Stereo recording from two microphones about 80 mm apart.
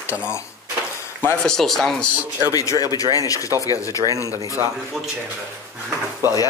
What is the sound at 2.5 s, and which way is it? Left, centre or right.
A man's voice, left.